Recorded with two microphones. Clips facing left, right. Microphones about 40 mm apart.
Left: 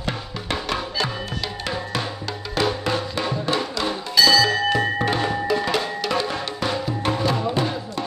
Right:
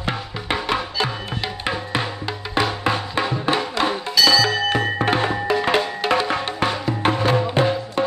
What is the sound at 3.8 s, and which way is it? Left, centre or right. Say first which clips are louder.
Music: left 1 dB; right.